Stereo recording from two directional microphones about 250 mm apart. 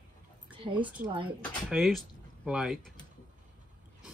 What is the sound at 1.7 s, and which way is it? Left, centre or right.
Speech, centre.